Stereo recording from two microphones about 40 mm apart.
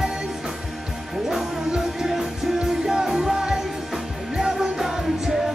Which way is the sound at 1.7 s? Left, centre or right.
Centre.